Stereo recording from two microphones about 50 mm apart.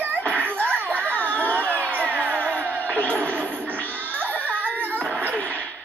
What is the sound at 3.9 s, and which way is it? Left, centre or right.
Music, right.